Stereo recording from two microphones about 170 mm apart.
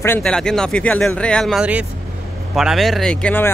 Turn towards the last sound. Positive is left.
turn(degrees=10)  # may be behind; listen again after turning